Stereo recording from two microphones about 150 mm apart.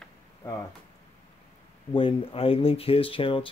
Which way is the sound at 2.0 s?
40° left (ahead or behind).